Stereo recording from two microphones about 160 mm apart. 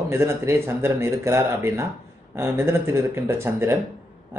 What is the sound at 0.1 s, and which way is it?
Speech, 15° right (ahead or behind).